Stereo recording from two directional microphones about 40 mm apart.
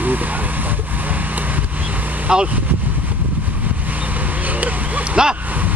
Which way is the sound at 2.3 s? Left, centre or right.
Right.